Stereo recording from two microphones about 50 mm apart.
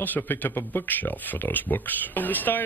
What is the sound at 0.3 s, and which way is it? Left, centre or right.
Speech, left.